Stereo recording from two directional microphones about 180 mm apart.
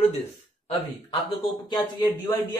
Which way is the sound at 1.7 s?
25° left (ahead or behind).